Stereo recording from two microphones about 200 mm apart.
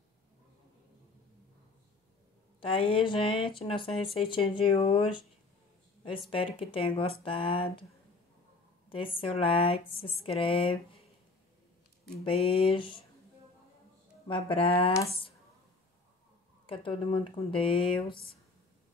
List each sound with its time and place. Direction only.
2.6 s speech: 25° left (ahead or behind)
6.3 s speech: 25° left (ahead or behind)
8.8 s speech: 25° left (ahead or behind)
12.3 s speech: 30° left (ahead or behind)
14.2 s speech: 25° left (ahead or behind)
16.6 s speech: 25° left (ahead or behind)